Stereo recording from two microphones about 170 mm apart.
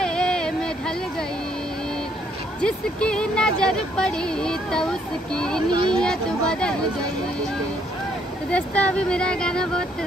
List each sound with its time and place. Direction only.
0.0 s a sound: 5° left (ahead or behind)
2.6 s speech: 5° left (ahead or behind)
5.7 s speech: 25° right (ahead or behind)
5.9 s speech: 5° left (ahead or behind)
8.5 s speech: 10° left (ahead or behind)